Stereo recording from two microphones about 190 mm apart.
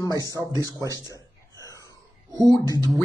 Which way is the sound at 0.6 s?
20° right (ahead or behind).